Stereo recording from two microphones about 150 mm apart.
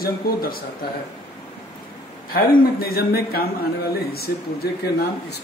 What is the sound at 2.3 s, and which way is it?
A man's voice, 80° left.